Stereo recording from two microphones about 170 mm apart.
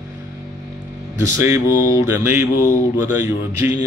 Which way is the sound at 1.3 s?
15° right (ahead or behind).